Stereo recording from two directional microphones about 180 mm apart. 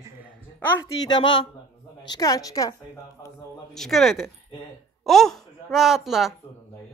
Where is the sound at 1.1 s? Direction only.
30° left (ahead or behind).